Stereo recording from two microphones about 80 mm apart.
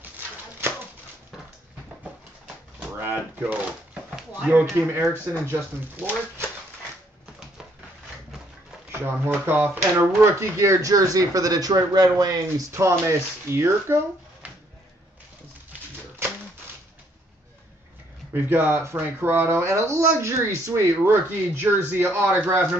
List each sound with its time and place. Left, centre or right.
0.6 s a sound: right
3.0 s speech: right
8.9 s speech: right
10.4 s speech: right
12.7 s speech: right
18.3 s speech: right
19.6 s speech: right